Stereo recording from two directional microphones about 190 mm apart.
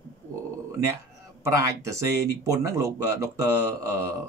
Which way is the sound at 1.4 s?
15° right (ahead or behind).